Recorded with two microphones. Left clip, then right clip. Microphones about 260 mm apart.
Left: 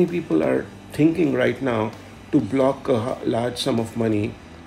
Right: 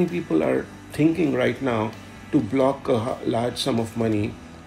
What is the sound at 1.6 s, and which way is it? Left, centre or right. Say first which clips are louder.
Speech: left 1 dB; left.